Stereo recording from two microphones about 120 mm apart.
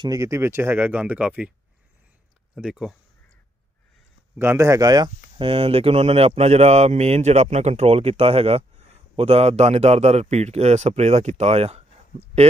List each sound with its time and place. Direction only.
0.0 s speech: 30° right (ahead or behind); by 1.5 s 10° right (ahead or behind)
2.5 s speech: 5° right (ahead or behind)
4.4 s a man's voice: 20° right (ahead or behind)
5.4 s speech: 50° right (ahead or behind)